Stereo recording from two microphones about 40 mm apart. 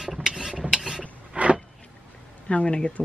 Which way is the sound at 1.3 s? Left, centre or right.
Right.